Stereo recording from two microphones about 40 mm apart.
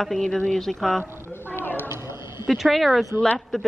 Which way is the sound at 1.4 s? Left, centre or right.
Left.